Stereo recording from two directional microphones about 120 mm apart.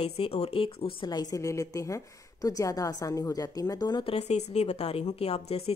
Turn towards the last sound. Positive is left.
turn(degrees=60)  # may be behind; listen again after turning